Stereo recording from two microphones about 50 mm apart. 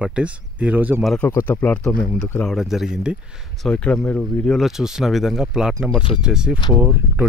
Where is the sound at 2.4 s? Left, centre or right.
Centre.